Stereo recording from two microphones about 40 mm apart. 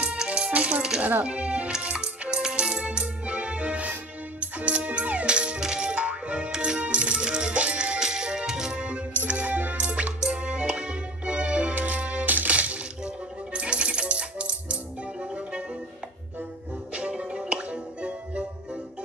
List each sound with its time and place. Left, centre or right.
0.3 s music: right
1.2 s speech: right
1.8 s music: right
9.2 s music: right
12.3 s music: right
13.0 s music: right
16.9 s music: right